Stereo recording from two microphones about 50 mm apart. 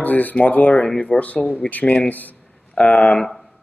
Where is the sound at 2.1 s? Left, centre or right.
Left.